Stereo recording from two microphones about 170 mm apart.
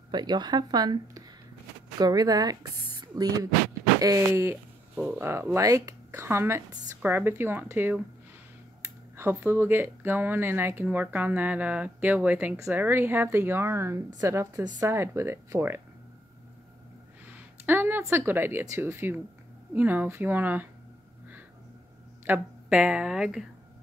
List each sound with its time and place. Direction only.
0.1 s speech: 25° right (ahead or behind)
17.3 s speech: 10° right (ahead or behind)
22.2 s speech: 10° right (ahead or behind)